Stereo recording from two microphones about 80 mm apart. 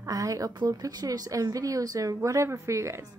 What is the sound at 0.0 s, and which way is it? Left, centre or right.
A woman's voice, right.